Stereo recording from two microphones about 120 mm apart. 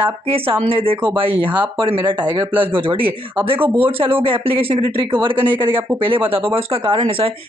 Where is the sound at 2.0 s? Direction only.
20° right (ahead or behind).